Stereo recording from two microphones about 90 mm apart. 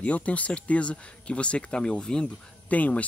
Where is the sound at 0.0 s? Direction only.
15° left (ahead or behind).